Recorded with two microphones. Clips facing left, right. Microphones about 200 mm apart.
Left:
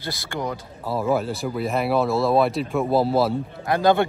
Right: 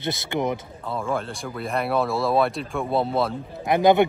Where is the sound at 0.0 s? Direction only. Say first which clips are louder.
Right 4 dB; 25° right (ahead or behind).